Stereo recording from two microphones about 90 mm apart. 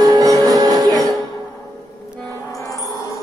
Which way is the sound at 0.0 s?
45° right (ahead or behind).